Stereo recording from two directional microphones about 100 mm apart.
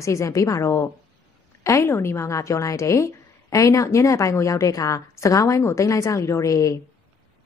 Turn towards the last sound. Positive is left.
turn(degrees=35)  # may be behind; listen again after turning